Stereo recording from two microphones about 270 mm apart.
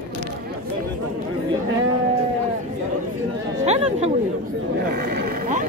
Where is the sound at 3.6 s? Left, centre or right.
Right.